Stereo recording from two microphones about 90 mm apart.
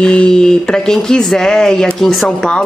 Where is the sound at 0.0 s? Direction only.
10° left (ahead or behind).